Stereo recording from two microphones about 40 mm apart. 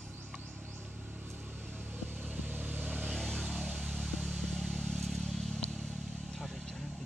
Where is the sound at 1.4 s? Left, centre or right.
Right.